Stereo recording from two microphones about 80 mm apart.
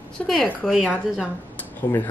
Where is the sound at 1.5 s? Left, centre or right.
Left.